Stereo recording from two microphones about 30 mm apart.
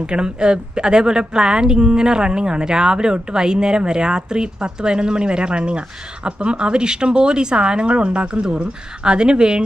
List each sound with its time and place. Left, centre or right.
0.0 s speech: right